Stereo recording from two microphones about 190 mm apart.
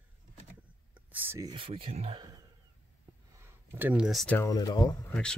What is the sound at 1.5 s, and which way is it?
Speech, 30° right (ahead or behind).